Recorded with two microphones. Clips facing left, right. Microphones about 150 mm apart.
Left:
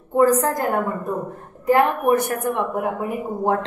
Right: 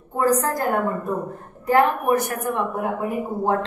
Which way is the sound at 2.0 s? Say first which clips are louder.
Left 2 dB; 25° left (ahead or behind).